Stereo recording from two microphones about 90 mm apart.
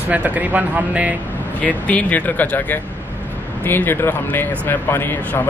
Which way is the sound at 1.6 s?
15° left (ahead or behind).